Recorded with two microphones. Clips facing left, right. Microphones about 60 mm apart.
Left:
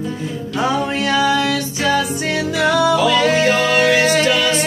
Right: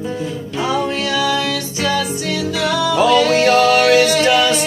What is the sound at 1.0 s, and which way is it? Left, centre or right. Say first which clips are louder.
Music: left 2 dB; left.